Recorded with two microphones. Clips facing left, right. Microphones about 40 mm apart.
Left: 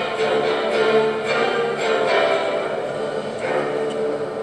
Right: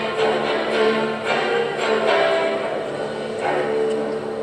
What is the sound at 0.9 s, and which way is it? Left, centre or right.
Music, left.